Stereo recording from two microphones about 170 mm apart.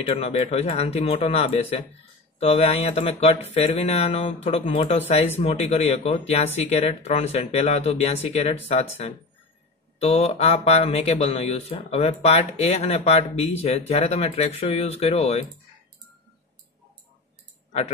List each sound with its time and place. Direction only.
0.0 s speech: 35° left (ahead or behind)